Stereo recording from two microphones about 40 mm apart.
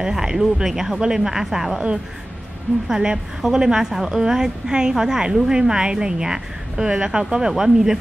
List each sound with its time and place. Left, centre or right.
0.0 s a woman's voice: centre
2.9 s a woman's voice: centre